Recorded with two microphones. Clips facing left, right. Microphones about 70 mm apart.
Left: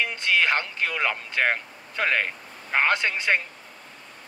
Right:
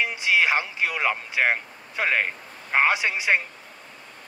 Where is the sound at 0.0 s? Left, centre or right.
Centre.